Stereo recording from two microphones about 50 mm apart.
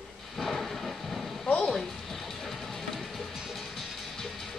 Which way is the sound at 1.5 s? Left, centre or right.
Centre.